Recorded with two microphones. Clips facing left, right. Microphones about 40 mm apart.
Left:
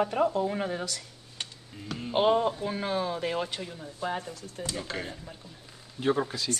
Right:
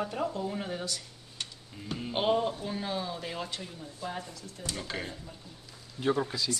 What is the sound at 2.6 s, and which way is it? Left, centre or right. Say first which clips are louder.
Speech: left 4 dB; left.